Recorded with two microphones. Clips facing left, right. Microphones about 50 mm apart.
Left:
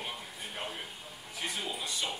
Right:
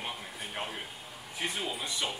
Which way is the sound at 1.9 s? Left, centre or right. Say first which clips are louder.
Right 1 dB; right.